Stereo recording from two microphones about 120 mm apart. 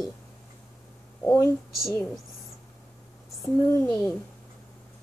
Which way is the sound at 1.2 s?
20° left (ahead or behind).